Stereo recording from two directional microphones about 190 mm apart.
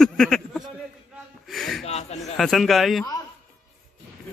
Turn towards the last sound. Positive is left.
turn(degrees=0)  # may be behind; listen again after turning